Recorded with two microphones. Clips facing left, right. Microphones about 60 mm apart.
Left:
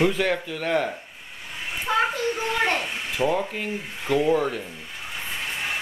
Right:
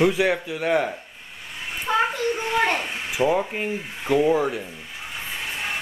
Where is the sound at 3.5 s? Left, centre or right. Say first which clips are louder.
Right 2 dB; centre.